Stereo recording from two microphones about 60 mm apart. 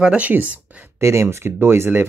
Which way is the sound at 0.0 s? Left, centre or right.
Right.